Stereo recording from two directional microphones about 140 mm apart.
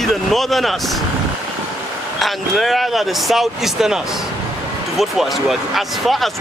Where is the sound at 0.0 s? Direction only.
Centre (ahead or behind).